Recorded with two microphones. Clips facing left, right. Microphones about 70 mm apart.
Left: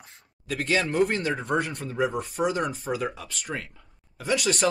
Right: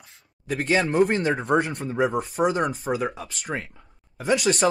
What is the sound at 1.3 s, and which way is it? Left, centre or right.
Speech, centre.